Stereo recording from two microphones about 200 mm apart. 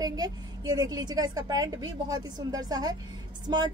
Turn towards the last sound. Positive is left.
turn(degrees=-20)  # may be behind; listen again after turning